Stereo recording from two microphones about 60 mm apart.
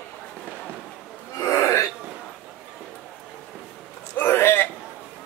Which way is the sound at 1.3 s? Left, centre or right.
Left.